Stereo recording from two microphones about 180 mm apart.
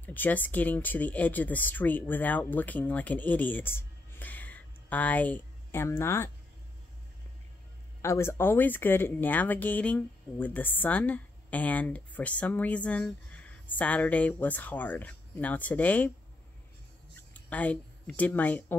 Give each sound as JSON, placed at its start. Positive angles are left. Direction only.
{"t": 0.0, "sound": "speech", "side_deg": 10}
{"t": 8.0, "sound": "speech", "side_deg": 15}
{"t": 17.1, "sound": "speech", "side_deg": 10}